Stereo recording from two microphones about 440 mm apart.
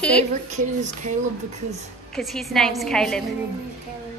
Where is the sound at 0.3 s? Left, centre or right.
Centre.